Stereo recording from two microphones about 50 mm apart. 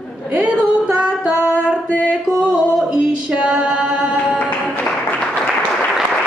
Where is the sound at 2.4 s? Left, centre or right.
Right.